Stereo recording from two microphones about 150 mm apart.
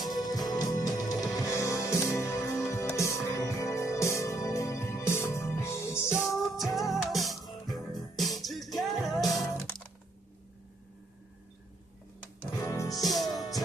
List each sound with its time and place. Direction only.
0.0 s music: 25° left (ahead or behind)
6.2 s music: centre (ahead or behind)
12.5 s music: 20° left (ahead or behind)